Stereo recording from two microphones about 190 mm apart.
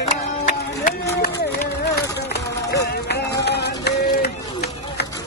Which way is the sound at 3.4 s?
60° left (ahead or behind).